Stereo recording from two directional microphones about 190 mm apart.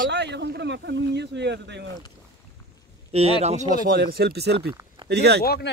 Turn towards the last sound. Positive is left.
turn(degrees=60)  # may be behind; listen again after turning